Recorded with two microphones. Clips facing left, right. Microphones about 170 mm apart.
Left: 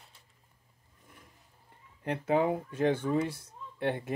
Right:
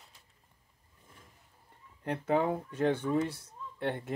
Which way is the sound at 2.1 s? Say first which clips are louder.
Left 1 dB; 10° left (ahead or behind).